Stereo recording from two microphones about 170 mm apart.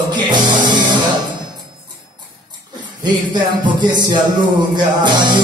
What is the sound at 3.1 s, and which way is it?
Speech, 25° right (ahead or behind).